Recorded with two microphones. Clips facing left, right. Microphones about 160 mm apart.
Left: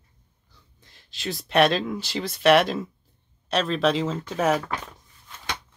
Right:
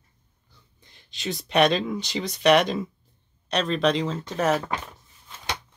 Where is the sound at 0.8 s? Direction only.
Centre (ahead or behind).